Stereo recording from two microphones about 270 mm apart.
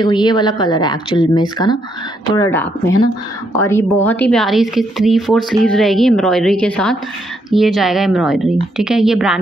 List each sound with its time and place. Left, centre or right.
0.0 s a woman's voice: centre